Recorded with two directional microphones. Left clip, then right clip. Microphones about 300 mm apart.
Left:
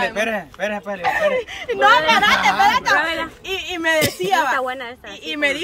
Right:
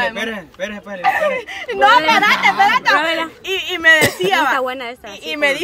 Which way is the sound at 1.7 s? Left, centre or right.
Centre.